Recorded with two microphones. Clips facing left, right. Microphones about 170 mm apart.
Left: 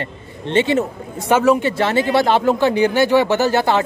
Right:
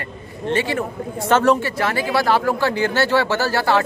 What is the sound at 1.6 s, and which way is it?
Speech, 25° left (ahead or behind).